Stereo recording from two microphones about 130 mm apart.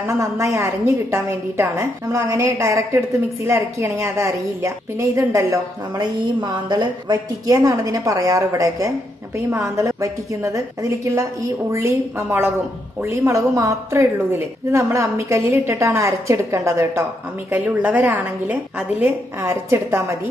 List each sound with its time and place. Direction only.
0.0 s a woman's voice: 20° right (ahead or behind)